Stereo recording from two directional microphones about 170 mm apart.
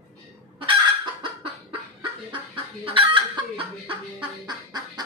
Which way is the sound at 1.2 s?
30° right (ahead or behind).